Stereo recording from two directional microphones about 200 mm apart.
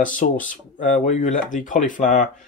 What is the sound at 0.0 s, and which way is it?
Speech, 40° left (ahead or behind).